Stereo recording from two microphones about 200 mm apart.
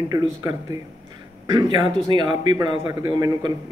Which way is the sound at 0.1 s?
20° right (ahead or behind).